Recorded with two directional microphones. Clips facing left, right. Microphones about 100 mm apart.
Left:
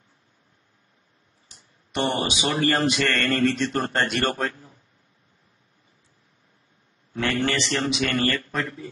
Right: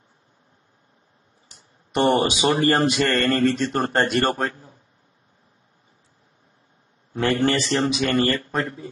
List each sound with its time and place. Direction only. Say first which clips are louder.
2.0 s a man's voice: right 6 dB; 45° right (ahead or behind)
3.0 s mantra: right 3 dB; 25° right (ahead or behind)
3.4 s a man's voice: right 2 dB; 40° right (ahead or behind)
7.2 s a man's voice: right 4 dB; 30° right (ahead or behind)